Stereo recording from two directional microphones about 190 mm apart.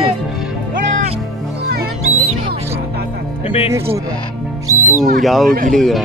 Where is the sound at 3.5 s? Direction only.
30° left (ahead or behind).